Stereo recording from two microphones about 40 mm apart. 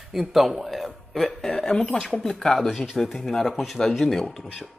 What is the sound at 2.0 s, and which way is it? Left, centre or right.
Speech, centre.